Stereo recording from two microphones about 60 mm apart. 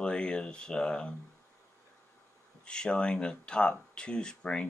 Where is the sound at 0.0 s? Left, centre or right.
Centre.